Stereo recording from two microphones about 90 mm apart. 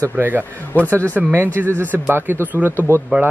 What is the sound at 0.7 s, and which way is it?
Speech, 20° left (ahead or behind).